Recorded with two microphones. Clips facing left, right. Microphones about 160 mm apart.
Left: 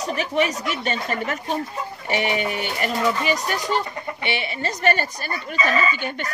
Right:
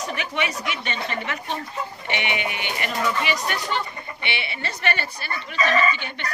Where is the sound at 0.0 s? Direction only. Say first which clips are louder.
Left 5 dB; 35° left (ahead or behind).